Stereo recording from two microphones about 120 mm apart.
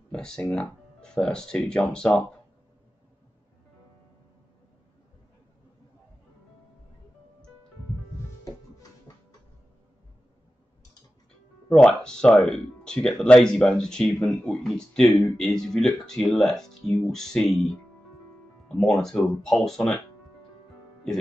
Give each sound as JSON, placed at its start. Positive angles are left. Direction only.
{"t": 0.1, "sound": "speech", "side_deg": 5}
{"t": 9.1, "sound": "a sound", "side_deg": 30}
{"t": 11.7, "sound": "speech", "side_deg": 5}
{"t": 18.8, "sound": "speech", "side_deg": 5}